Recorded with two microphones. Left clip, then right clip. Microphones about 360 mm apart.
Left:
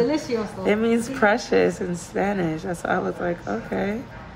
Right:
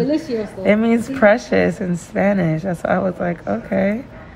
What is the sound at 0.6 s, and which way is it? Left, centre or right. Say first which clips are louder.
Speech: right 6 dB; centre.